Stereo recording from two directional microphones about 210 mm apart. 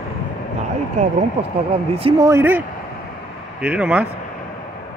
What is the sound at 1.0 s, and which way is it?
Speech, 35° right (ahead or behind).